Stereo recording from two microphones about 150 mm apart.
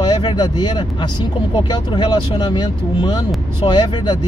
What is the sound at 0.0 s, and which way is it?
Speech, 30° left (ahead or behind).